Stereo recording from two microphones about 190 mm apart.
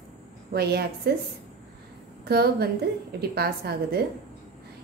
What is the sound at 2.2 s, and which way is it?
A woman's voice, 55° right (ahead or behind).